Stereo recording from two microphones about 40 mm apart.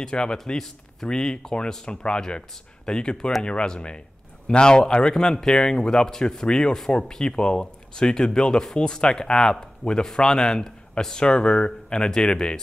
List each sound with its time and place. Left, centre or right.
0.0 s speech: left